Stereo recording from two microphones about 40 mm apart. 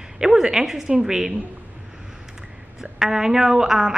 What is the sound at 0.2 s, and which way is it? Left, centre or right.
A woman's voice, centre.